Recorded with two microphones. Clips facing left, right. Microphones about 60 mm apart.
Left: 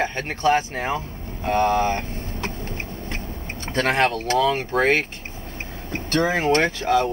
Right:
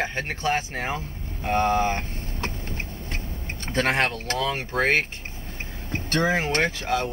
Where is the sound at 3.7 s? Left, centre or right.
Centre.